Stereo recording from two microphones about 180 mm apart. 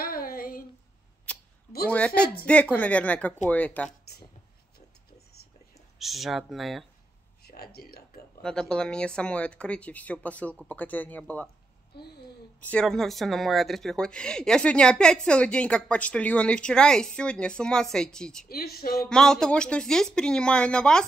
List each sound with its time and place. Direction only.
0.0 s a sound: 55° left (ahead or behind)
1.3 s a sound: 5° left (ahead or behind)
1.9 s speech: 5° left (ahead or behind)
5.9 s speech: centre (ahead or behind)
7.4 s speech: 60° left (ahead or behind)
8.4 s speech: 5° left (ahead or behind)
11.9 s speech: 65° left (ahead or behind)
12.5 s speech: 5° left (ahead or behind)
18.5 s speech: 55° left (ahead or behind)
18.9 s speech: 5° left (ahead or behind)